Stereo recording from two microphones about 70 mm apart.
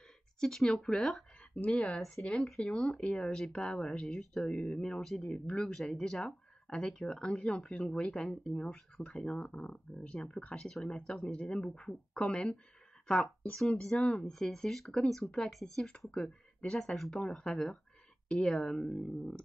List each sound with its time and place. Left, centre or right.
0.4 s speech: centre
2.0 s speech: centre
14.0 s speech: centre
14.3 s speech: centre